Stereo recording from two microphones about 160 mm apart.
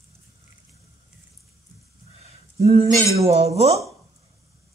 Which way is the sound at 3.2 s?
40° right (ahead or behind).